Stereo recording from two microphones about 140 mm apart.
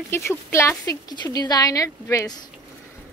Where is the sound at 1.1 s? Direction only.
30° left (ahead or behind).